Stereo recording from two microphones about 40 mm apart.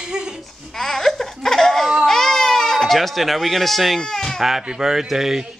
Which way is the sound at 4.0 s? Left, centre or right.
Centre.